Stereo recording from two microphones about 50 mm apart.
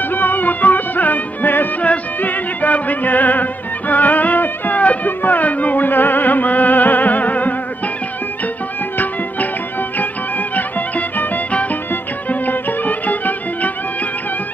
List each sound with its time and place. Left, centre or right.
0.1 s music: left
8.9 s music: left
10.5 s music: left